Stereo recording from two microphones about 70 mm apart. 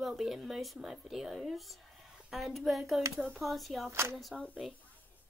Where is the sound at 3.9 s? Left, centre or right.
Right.